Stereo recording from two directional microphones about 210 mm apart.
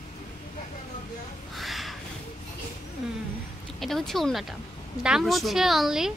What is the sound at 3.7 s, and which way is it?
Speech, centre (ahead or behind).